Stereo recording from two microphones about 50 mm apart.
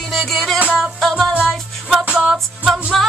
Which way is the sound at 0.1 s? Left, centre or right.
Centre.